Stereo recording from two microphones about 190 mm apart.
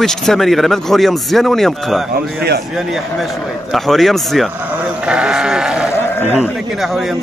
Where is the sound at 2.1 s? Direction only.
55° right (ahead or behind).